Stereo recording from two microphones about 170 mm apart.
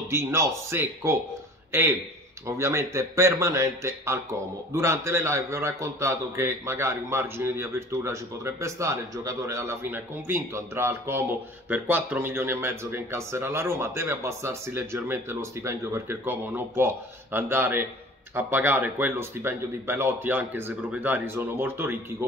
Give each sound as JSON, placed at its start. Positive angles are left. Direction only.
{"t": 0.1, "sound": "a man's voice", "side_deg": -15}